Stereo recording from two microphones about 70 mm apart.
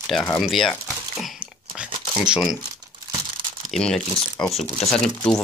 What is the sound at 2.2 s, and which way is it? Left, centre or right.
Speech, centre.